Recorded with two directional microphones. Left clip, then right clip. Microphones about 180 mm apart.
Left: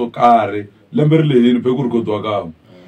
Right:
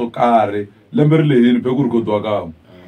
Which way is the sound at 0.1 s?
15° right (ahead or behind).